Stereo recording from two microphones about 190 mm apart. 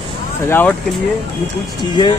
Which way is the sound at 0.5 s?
10° left (ahead or behind).